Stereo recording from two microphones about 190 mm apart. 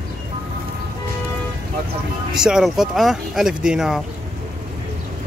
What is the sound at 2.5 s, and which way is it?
Speech, 5° right (ahead or behind).